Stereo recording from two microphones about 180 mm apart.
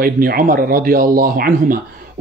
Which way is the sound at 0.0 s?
55° right (ahead or behind).